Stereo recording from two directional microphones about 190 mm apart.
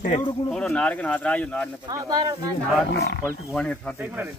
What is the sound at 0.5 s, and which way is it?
Speech, 5° left (ahead or behind).